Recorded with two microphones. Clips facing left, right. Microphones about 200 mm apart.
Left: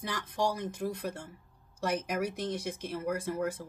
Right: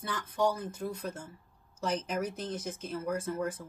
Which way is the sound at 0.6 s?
75° left (ahead or behind).